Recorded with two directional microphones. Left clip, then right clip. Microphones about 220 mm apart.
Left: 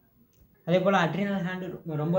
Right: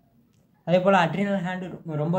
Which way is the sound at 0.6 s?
10° right (ahead or behind).